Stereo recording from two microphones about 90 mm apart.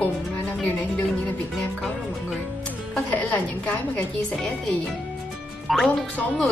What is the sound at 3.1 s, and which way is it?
Music, 15° left (ahead or behind).